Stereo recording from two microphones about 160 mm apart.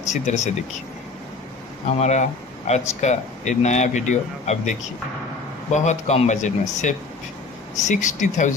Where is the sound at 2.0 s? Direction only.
45° left (ahead or behind).